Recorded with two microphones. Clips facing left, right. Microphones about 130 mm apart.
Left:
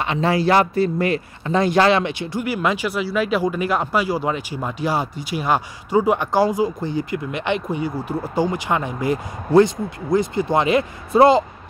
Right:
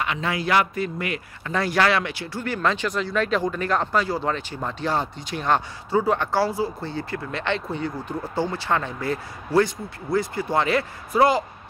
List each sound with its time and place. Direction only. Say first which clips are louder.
0.0 s speech: left 7 dB; 30° left (ahead or behind)
2.4 s speech: left 2 dB; 10° left (ahead or behind)